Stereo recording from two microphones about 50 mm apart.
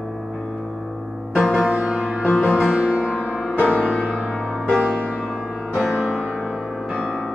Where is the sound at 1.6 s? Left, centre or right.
Right.